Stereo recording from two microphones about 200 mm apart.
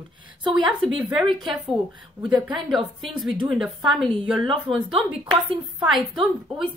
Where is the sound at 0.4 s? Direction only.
25° right (ahead or behind).